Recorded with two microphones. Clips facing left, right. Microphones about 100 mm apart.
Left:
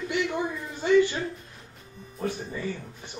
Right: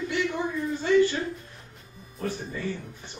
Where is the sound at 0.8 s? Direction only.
20° left (ahead or behind).